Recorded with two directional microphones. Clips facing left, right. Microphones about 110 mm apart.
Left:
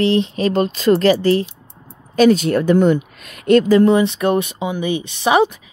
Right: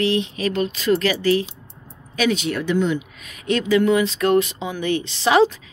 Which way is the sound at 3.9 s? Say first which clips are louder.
Left 3 dB; 25° left (ahead or behind).